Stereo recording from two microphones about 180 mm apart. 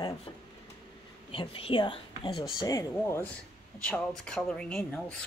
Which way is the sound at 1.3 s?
30° left (ahead or behind).